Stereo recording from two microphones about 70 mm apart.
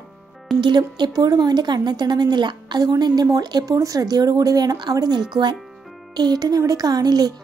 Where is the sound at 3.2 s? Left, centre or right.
Right.